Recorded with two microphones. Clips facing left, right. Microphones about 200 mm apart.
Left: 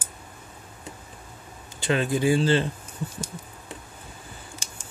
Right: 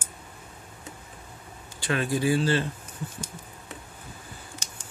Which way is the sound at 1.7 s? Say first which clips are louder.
Left 3 dB; 25° left (ahead or behind).